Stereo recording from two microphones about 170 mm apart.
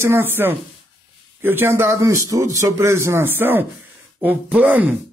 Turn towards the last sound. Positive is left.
turn(degrees=-10)  # may be behind; listen again after turning